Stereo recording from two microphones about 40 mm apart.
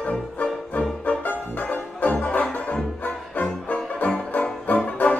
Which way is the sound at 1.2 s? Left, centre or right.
Left.